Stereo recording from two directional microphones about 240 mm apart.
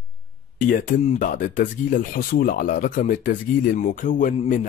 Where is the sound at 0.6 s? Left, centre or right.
Left.